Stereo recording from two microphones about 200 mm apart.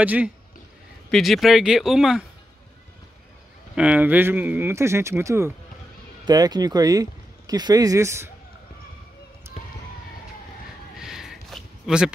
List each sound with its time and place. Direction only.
0.0 s speech: 10° right (ahead or behind)
3.7 s speech: 5° right (ahead or behind)
11.0 s a sound: centre (ahead or behind)